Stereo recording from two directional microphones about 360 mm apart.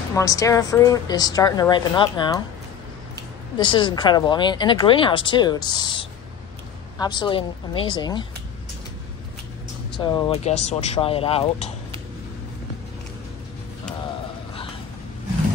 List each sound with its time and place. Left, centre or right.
0.1 s a woman's voice: centre
3.7 s a woman's voice: centre
9.9 s a woman's voice: centre